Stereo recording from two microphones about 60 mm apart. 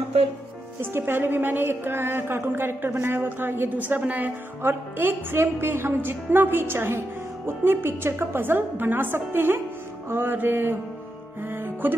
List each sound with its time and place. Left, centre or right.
0.7 s a woman's voice: right
11.4 s music: right